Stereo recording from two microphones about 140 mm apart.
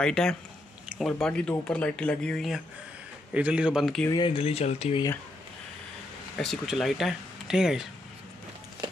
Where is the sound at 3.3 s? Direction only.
10° right (ahead or behind).